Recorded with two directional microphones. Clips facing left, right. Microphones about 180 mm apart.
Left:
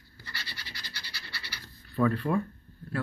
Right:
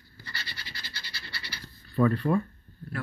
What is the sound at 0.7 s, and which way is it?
Scratch, 15° left (ahead or behind).